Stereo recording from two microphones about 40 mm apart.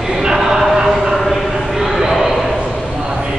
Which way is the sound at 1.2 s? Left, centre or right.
Centre.